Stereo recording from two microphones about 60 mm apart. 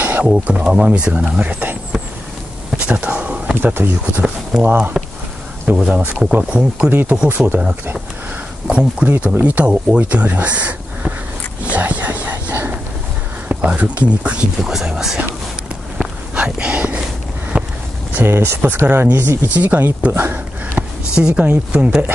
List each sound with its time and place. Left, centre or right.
0.2 s speech: centre
2.8 s speech: centre
3.6 s speech: right
6.9 s speech: right
11.7 s a sound: right
13.5 s speech: right
14.6 s speech: centre
16.0 s walk: right
18.1 s speech: right
19.5 s speech: right
20.1 s speech: right
20.8 s a sound: centre
21.1 s speech: centre